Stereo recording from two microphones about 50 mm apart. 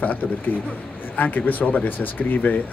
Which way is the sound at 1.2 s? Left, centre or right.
Left.